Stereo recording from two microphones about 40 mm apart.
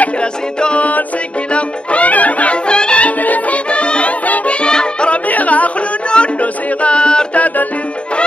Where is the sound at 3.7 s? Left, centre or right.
Left.